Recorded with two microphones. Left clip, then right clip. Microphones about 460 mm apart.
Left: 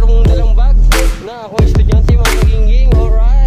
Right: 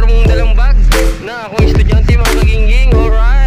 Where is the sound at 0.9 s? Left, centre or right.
Centre.